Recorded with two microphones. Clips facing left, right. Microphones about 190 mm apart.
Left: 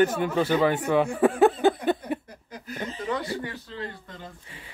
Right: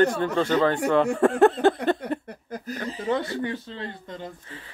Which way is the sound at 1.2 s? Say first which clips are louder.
Right 1 dB; centre (ahead or behind).